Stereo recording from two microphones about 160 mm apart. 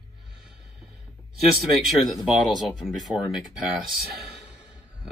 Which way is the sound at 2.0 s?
Centre (ahead or behind).